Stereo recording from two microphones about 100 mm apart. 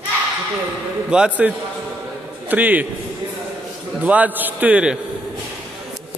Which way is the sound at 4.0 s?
15° right (ahead or behind).